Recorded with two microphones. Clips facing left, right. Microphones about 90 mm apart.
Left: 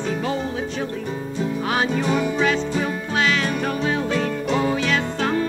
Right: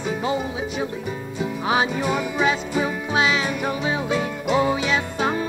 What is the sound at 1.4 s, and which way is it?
Music, 10° right (ahead or behind).